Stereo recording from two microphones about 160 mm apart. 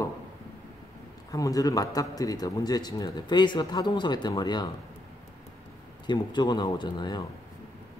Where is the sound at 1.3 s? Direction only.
20° left (ahead or behind).